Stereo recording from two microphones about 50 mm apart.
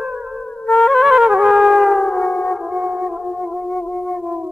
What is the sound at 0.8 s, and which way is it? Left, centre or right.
Music, centre.